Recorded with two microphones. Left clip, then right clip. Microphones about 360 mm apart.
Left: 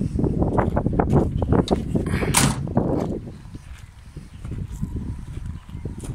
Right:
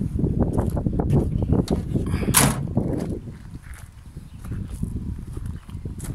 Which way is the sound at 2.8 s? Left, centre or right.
Left.